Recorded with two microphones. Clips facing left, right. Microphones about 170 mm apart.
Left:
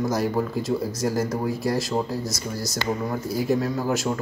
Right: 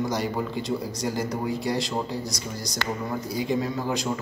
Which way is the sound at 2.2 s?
15° right (ahead or behind).